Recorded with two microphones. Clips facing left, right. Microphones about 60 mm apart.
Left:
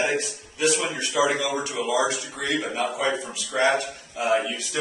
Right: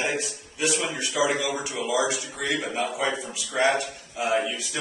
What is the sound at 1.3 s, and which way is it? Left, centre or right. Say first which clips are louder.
A man's voice: left 2 dB; centre.